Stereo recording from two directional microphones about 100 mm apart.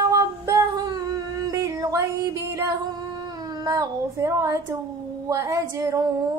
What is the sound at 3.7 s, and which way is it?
Female singing, 30° right (ahead or behind).